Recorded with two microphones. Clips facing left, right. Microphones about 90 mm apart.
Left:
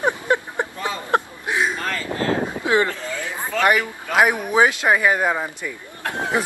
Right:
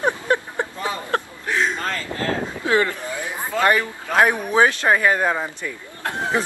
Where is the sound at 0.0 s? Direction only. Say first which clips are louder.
Even; 15° left (ahead or behind).